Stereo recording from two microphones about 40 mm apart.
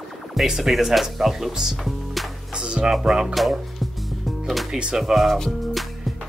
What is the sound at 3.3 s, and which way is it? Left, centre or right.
Music, centre.